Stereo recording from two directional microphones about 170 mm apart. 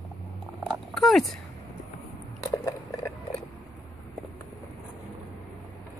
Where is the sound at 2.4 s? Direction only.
20° left (ahead or behind).